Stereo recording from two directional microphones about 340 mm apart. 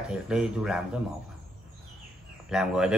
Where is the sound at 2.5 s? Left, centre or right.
Centre.